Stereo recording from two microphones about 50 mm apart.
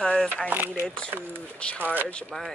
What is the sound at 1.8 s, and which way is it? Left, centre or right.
Speech, right.